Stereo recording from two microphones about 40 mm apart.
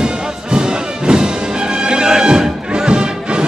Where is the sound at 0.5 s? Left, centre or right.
Centre.